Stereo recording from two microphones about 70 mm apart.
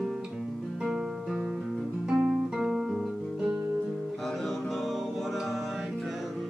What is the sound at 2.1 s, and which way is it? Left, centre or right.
Guitar, centre.